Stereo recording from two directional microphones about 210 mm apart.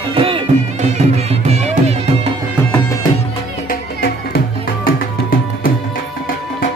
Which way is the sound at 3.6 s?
45° left (ahead or behind).